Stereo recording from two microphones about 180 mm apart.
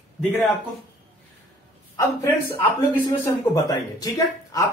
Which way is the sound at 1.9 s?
15° left (ahead or behind).